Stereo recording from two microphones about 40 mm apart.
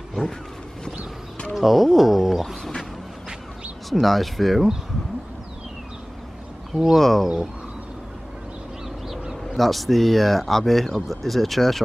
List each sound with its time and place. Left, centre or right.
1.5 s speech: centre
3.9 s speech: centre
6.7 s speech: centre
8.8 s crow: centre
9.4 s speech: centre